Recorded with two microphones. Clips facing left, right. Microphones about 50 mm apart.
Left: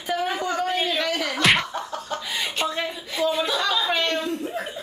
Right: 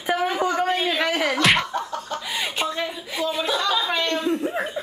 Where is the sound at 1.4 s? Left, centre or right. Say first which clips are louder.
Left 2 dB; centre.